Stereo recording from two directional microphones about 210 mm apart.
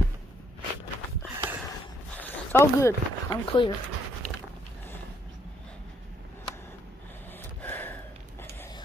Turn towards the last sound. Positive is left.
turn(degrees=10)  # may be behind; listen again after turning